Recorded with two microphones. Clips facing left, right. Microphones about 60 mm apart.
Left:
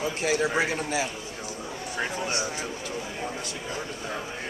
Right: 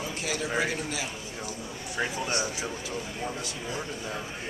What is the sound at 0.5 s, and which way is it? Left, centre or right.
Speech, left.